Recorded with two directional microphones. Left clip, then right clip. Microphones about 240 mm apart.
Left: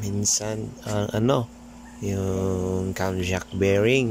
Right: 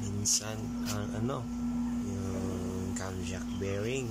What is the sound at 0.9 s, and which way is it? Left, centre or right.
Speech, left.